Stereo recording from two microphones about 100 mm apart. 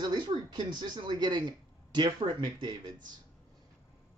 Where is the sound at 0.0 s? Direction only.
50° right (ahead or behind).